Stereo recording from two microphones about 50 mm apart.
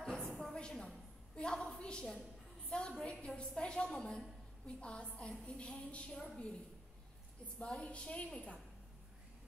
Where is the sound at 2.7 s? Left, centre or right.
Centre.